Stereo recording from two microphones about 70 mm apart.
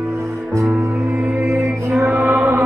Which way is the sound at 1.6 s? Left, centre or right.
Right.